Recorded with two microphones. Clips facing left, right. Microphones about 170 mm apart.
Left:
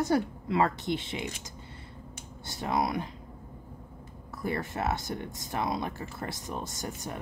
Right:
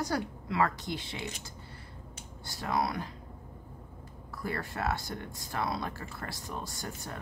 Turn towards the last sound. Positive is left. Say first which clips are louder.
# left 3 dB
turn(degrees=20)  # may be behind; listen again after turning